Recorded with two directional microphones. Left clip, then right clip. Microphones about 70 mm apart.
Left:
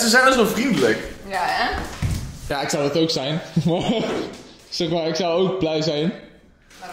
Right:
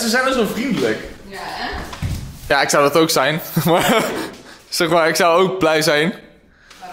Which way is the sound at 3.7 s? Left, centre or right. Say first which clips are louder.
Right 8 dB; left.